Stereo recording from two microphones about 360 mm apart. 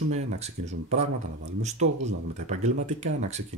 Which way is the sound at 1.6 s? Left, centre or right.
Centre.